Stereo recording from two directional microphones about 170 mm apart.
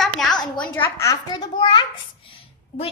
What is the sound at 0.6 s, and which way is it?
Speech, 10° left (ahead or behind).